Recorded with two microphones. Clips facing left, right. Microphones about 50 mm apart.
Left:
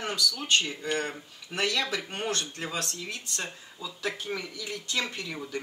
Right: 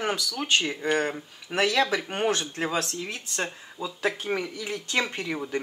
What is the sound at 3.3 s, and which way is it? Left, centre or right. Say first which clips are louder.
Speech: right 5 dB; right.